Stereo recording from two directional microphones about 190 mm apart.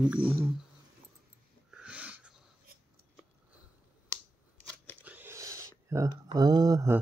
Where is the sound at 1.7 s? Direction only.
5° right (ahead or behind).